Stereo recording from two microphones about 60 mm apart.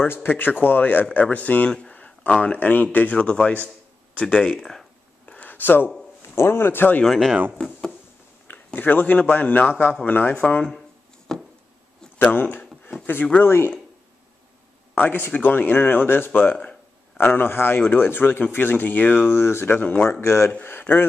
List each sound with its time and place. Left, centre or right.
0.1 s a man's voice: left
4.6 s speech: centre
5.2 s a sound: left
6.2 s a man's voice: left
7.1 s speech: centre
7.5 s a sound: centre
8.7 s a man's voice: left
11.3 s a sound: centre
12.2 s speech: left
15.0 s speech: left
19.8 s a man's voice: left
20.1 s speech: left
20.8 s speech: left